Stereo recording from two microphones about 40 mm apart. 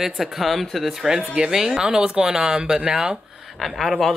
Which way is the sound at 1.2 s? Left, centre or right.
Right.